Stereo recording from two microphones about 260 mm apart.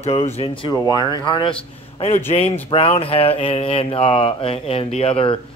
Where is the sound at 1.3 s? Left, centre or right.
Centre.